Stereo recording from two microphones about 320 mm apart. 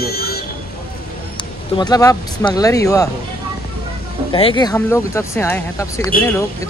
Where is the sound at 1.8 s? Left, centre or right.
Centre.